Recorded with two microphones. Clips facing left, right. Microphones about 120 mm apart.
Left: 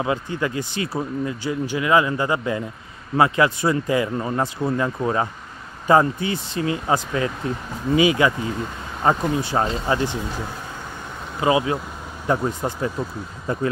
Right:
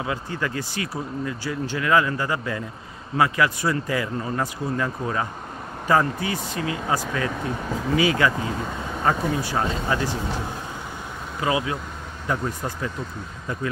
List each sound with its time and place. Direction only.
0.0 s speech: 20° left (ahead or behind)
11.4 s speech: 25° left (ahead or behind)